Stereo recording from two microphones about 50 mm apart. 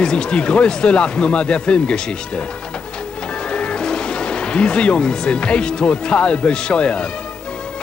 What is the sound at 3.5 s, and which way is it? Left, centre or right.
Speech, centre.